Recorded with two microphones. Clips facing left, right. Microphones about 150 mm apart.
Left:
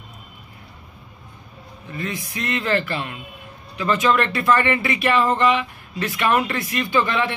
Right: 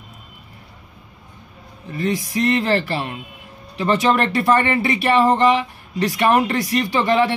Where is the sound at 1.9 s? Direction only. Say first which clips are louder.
Right 7 dB; 35° right (ahead or behind).